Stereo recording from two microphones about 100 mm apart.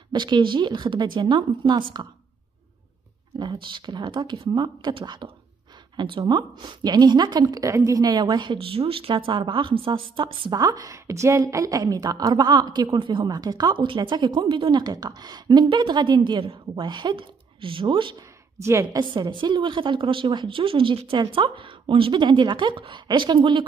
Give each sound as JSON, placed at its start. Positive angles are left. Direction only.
{"t": 0.1, "sound": "a woman's voice", "side_deg": -50}
{"t": 3.3, "sound": "a woman's voice", "side_deg": -50}
{"t": 10.5, "sound": "a woman's voice", "side_deg": -40}
{"t": 18.6, "sound": "a woman's voice", "side_deg": -30}
{"t": 18.9, "sound": "a woman's voice", "side_deg": -50}